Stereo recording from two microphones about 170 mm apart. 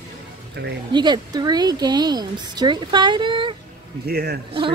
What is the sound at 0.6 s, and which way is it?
Speech, 75° right (ahead or behind).